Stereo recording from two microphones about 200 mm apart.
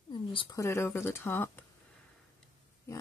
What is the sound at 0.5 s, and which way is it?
Speech, 15° left (ahead or behind).